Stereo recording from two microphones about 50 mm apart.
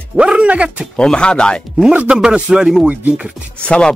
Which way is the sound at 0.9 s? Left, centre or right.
Centre.